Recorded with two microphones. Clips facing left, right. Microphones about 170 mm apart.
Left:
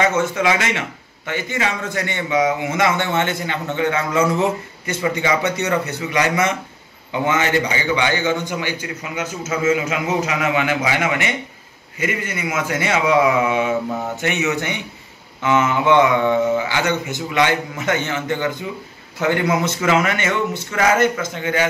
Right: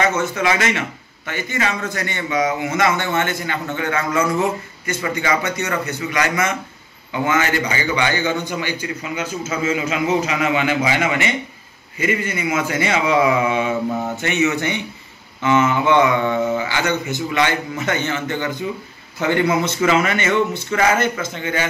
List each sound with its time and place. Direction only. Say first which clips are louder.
0.0 s a man's voice: left 1 dB; 15° left (ahead or behind)
7.1 s a man's voice: even; 25° left (ahead or behind); by 19.4 s 10° left (ahead or behind)
19.4 s speech: right 1 dB; 5° right (ahead or behind)
20.1 s a man's voice: right 2 dB; 10° left (ahead or behind)